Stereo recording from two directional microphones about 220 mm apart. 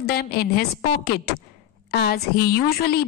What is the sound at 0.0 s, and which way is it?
A woman's voice, 45° left (ahead or behind).